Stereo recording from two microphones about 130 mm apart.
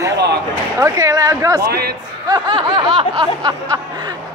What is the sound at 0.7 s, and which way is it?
Speech, 25° right (ahead or behind).